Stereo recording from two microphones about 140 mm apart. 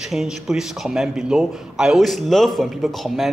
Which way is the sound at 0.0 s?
5° right (ahead or behind).